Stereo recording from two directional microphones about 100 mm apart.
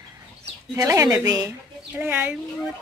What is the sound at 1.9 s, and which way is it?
Speech, 20° right (ahead or behind).